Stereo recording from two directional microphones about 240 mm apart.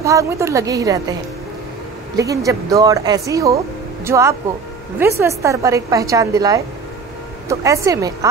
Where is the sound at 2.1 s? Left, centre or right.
Centre.